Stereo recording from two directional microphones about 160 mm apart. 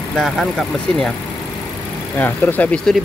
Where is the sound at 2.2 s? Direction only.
10° left (ahead or behind).